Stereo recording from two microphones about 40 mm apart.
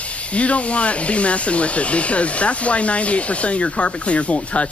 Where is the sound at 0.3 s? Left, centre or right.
Left.